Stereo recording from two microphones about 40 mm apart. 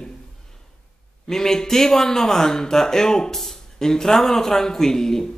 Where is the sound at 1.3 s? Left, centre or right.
Centre.